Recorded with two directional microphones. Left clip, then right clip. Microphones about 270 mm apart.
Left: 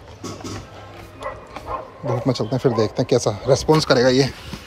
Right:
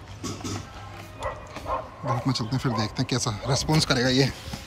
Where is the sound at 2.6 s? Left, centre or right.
Centre.